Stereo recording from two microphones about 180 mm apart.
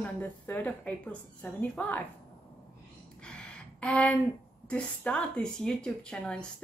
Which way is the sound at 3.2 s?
5° left (ahead or behind).